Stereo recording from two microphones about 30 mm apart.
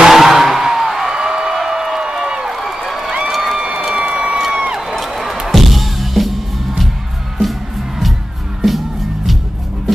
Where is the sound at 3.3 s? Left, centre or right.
Centre.